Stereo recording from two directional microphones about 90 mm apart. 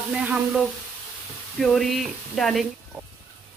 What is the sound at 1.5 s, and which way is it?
Speech, centre (ahead or behind).